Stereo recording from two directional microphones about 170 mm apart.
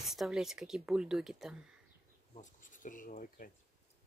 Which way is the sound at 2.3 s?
50° left (ahead or behind).